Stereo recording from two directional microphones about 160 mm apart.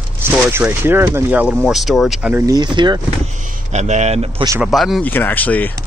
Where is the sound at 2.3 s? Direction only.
25° right (ahead or behind).